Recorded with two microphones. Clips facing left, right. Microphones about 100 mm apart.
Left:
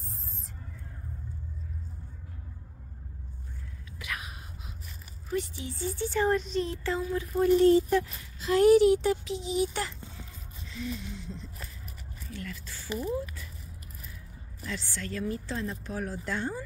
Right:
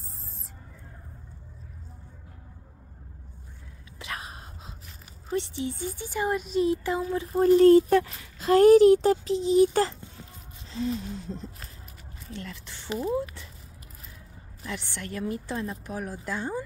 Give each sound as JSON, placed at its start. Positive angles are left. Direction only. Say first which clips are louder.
{"t": 4.0, "sound": "a sound", "louder": "right 2 dB", "side_deg": -30}
{"t": 5.3, "sound": "speech", "louder": "right 3 dB", "side_deg": -25}
{"t": 7.0, "sound": "speech", "louder": "right 2 dB", "side_deg": -25}
{"t": 7.3, "sound": "a child's voice", "louder": "right 5 dB", "side_deg": -45}
{"t": 12.3, "sound": "speech", "louder": "right 1 dB", "side_deg": -25}
{"t": 14.7, "sound": "speech", "louder": "right 1 dB", "side_deg": -20}